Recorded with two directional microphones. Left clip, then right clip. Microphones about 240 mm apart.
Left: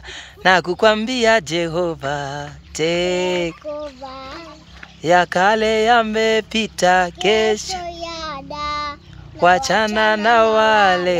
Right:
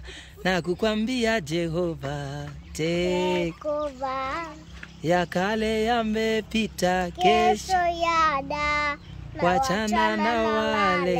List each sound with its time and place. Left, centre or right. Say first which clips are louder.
0.1 s speech: left 12 dB; centre
3.7 s a sound: right 2 dB; right
5.0 s speech: left 10 dB; centre
7.8 s child singing: right 6 dB; right
9.4 s speech: left 9 dB; centre